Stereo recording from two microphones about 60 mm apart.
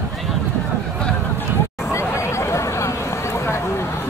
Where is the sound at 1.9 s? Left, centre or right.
Left.